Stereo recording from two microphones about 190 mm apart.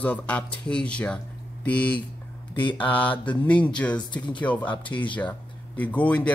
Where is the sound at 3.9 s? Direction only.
25° left (ahead or behind).